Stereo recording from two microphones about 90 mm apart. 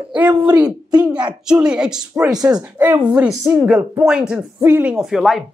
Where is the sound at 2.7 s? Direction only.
20° right (ahead or behind).